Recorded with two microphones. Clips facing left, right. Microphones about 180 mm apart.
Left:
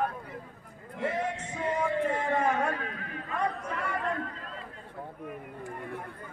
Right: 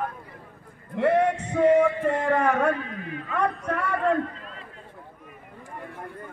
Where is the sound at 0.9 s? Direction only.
65° right (ahead or behind).